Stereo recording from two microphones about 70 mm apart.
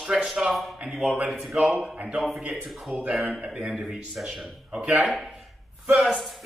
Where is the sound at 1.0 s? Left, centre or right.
Right.